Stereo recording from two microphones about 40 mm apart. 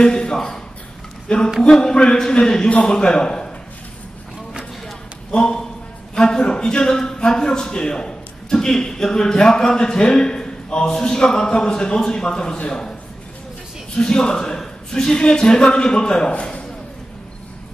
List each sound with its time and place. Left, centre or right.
0.0 s a sound: centre
1.6 s a man's voice: centre
5.3 s a man's voice: left
13.9 s a man's voice: left